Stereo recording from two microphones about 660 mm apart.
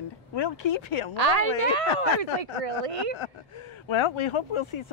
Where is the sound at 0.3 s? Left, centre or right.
Left.